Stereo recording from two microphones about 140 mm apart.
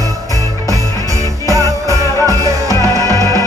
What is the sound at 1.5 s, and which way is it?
Music, 25° left (ahead or behind).